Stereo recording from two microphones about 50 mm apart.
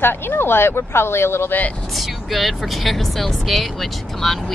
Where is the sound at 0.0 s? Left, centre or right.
Left.